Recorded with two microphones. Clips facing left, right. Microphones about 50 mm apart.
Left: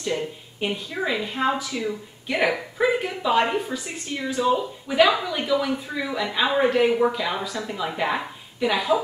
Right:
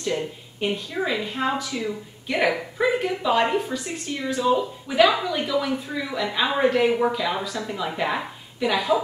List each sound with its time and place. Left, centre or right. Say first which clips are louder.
0.0 s a woman's voice: even; centre